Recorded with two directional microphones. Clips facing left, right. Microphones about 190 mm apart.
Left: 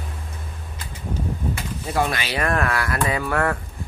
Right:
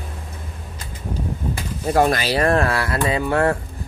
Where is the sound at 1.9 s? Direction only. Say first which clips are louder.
Right 6 dB; 45° right (ahead or behind); by 3.5 s 25° right (ahead or behind).